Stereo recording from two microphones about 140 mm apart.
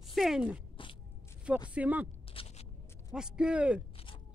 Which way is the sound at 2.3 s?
40° left (ahead or behind).